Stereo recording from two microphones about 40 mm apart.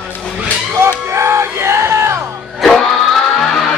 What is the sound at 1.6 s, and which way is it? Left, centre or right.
Music, right.